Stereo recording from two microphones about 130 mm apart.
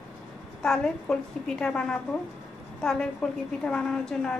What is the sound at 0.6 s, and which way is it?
A woman's voice, 5° left (ahead or behind).